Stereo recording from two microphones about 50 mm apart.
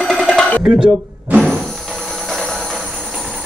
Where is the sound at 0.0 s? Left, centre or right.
Centre.